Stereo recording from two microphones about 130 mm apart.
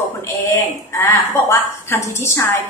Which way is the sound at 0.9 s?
20° left (ahead or behind).